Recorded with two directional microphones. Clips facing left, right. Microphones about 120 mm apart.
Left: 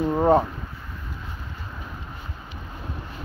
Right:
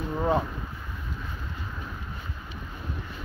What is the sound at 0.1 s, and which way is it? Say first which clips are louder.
Speech: left 6 dB; 40° left (ahead or behind).